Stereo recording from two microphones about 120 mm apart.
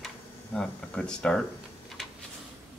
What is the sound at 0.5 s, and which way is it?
Speech, 10° left (ahead or behind).